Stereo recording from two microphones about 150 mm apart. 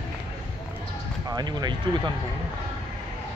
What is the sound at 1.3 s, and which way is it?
Speech, 30° right (ahead or behind).